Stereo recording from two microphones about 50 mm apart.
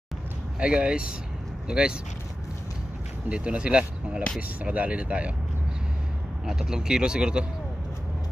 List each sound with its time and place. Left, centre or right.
0.6 s speech: right
3.3 s speech: right
6.4 s speech: centre